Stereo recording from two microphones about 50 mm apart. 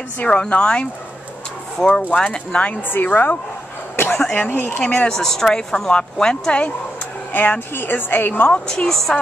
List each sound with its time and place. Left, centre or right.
0.2 s speech: left
2.9 s a woman's voice: left
3.9 s a sound: left
4.3 s a woman's voice: left
4.8 s speech: left
5.1 s speech: centre
7.3 s a woman's voice: left
8.8 s a woman's voice: centre